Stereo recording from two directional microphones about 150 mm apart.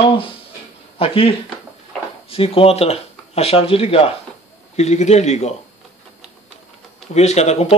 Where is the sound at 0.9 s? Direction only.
40° left (ahead or behind).